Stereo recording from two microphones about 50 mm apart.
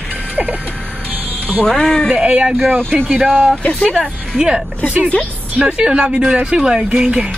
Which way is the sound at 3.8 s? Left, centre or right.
Centre.